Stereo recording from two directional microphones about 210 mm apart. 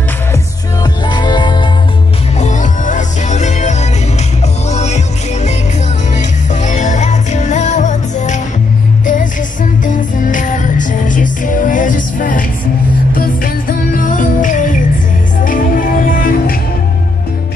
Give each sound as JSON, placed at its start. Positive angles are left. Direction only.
{"t": 1.0, "sound": "music", "side_deg": 20}
{"t": 2.3, "sound": "music", "side_deg": 35}